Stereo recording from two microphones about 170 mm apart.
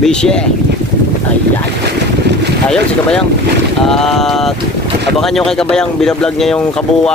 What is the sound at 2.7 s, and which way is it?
Speech, 5° left (ahead or behind).